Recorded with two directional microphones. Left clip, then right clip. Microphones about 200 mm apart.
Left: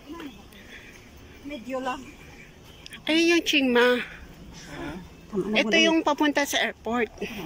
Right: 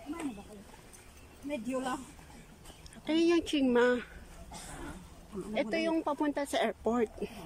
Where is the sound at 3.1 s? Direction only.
10° right (ahead or behind).